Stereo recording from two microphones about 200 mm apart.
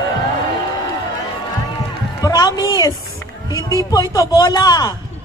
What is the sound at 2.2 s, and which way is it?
A woman's voice, 20° left (ahead or behind).